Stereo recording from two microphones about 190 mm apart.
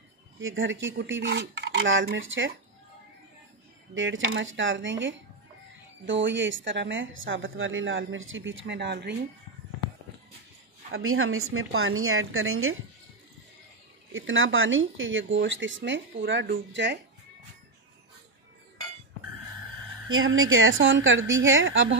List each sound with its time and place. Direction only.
0.4 s speech: 90° right
3.9 s speech: 90° right; by 9.1 s 65° right (ahead or behind)
10.9 s a woman's voice: 90° right
14.1 s a woman's voice: 90° right; by 17.0 s 70° right (ahead or behind)
20.1 s a woman's voice: 90° right